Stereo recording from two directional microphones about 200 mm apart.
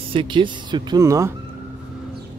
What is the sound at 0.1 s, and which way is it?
Speech, 25° right (ahead or behind).